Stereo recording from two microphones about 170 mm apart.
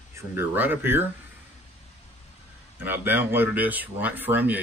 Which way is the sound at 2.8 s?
10° right (ahead or behind).